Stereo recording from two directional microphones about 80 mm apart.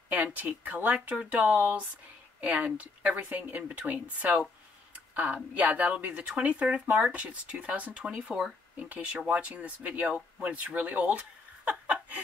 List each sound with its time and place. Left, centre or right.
0.1 s speech: centre